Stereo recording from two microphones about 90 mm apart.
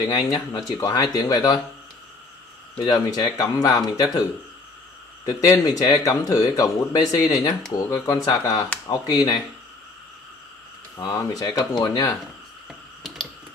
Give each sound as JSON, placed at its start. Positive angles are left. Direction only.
{"t": 0.0, "sound": "speech", "side_deg": 45}
{"t": 2.8, "sound": "speech", "side_deg": 50}
{"t": 5.2, "sound": "speech", "side_deg": 45}
{"t": 11.0, "sound": "speech", "side_deg": 45}
{"t": 12.6, "sound": "computer keyboard", "side_deg": 0}